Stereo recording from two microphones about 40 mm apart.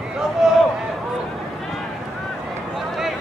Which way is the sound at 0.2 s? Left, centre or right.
Centre.